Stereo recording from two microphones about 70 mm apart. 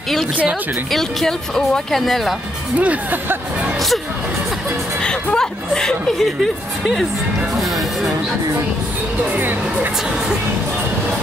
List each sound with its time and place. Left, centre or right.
0.9 s speech: centre
2.8 s speech: right
5.0 s speech: centre